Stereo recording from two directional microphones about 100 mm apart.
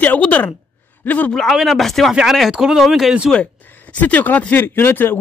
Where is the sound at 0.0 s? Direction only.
15° left (ahead or behind).